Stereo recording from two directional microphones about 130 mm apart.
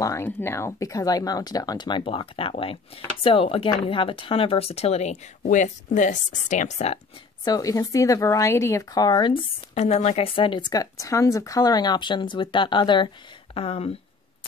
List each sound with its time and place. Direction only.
0.0 s a woman's voice: 20° left (ahead or behind); by 7.0 s 60° left (ahead or behind)
7.4 s speech: 25° left (ahead or behind)
9.8 s speech: 55° left (ahead or behind); by 13.1 s 35° left (ahead or behind)
13.6 s speech: 50° left (ahead or behind)